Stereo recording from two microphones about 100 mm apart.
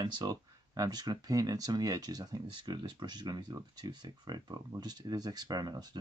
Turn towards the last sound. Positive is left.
turn(degrees=-45)  # may be behind; listen again after turning